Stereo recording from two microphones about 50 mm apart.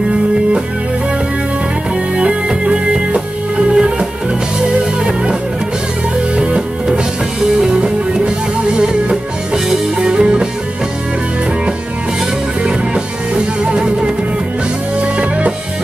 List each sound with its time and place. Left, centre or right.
2.1 s music: right
6.3 s music: right
7.6 s music: centre
12.6 s music: centre